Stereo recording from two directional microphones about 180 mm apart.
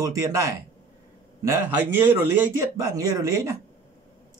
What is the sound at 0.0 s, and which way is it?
Speech, 20° right (ahead or behind).